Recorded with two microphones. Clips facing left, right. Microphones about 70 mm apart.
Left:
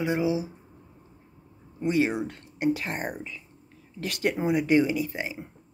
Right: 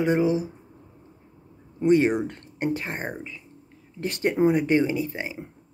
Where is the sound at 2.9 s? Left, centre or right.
Right.